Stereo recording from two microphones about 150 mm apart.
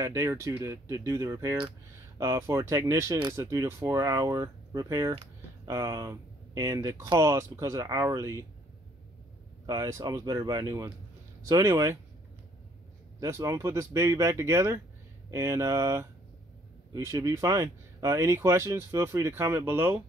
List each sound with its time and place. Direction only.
0.0 s speech: 20° right (ahead or behind)
9.7 s speech: 20° right (ahead or behind)
13.2 s speech: 20° right (ahead or behind)